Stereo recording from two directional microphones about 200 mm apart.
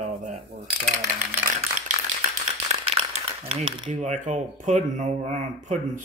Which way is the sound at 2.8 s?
30° right (ahead or behind).